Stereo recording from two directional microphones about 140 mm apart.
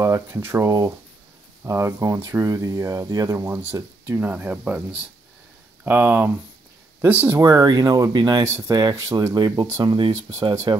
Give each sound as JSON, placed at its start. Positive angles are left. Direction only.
{"t": 0.0, "sound": "speech", "side_deg": -20}